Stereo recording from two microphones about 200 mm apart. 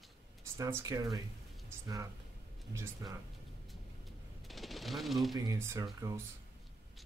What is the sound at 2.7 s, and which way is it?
Speech, 15° right (ahead or behind).